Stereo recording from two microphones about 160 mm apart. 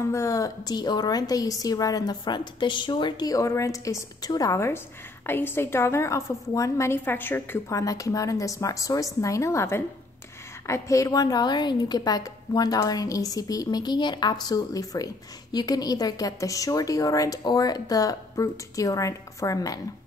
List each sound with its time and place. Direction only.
0.1 s a woman's voice: 20° left (ahead or behind)